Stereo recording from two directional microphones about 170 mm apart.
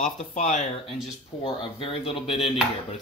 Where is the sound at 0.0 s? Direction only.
45° left (ahead or behind).